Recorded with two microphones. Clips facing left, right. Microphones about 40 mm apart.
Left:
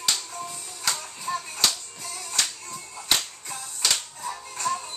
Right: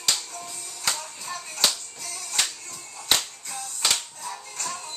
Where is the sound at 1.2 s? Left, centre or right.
Centre.